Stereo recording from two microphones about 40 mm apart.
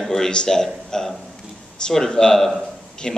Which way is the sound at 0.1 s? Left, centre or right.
Centre.